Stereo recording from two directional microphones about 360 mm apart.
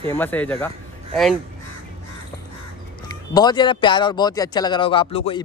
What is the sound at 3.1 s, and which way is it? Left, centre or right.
Speech, centre.